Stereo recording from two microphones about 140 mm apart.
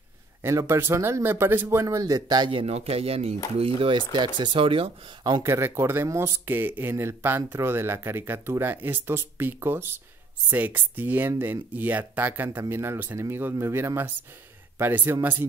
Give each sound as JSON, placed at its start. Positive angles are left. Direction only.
{"t": 0.4, "sound": "speech", "side_deg": -20}
{"t": 2.6, "sound": "speech", "side_deg": -45}
{"t": 5.4, "sound": "speech", "side_deg": -20}